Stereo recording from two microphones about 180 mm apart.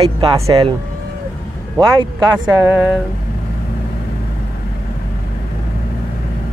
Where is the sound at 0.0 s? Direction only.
30° right (ahead or behind).